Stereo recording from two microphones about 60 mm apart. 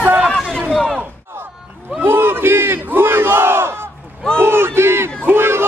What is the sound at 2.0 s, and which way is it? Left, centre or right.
Battle cry, right.